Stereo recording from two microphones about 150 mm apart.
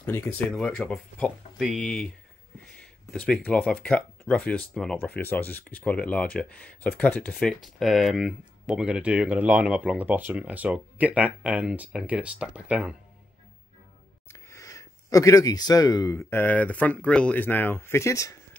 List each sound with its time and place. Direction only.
0.0 s speech: 15° left (ahead or behind)
3.1 s speech: 5° left (ahead or behind)
14.3 s speech: 20° left (ahead or behind)